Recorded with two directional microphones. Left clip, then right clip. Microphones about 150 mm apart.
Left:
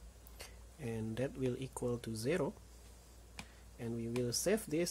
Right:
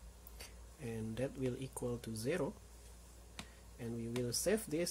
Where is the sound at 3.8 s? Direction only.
20° left (ahead or behind).